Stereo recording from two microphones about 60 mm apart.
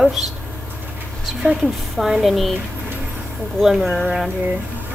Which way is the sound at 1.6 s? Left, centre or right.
Centre.